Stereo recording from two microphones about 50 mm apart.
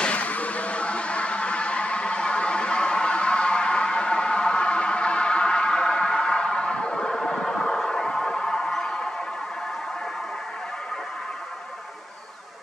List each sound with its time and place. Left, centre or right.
0.0 s music: left